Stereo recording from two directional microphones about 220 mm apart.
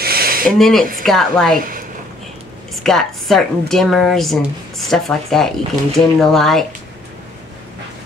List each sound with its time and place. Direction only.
0.0 s a sound: 45° right (ahead or behind)
0.6 s a woman's voice: centre (ahead or behind)
2.7 s a woman's voice: centre (ahead or behind)